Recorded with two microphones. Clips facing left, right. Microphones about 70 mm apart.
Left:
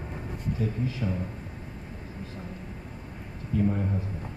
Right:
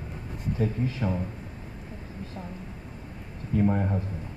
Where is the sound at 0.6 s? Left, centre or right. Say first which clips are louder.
Right 4 dB; right.